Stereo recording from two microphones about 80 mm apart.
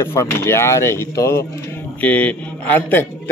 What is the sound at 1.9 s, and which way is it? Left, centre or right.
A man's voice, centre.